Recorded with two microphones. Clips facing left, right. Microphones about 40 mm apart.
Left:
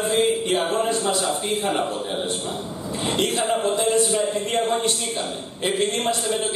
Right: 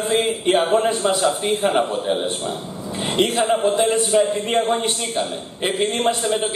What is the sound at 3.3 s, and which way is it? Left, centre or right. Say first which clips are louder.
Speech: right 4 dB; centre.